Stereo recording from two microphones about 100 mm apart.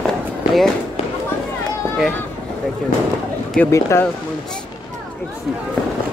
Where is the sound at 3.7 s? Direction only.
30° left (ahead or behind).